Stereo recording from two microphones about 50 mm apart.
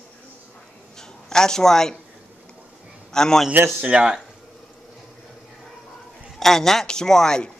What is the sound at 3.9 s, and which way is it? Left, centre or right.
Speech, right.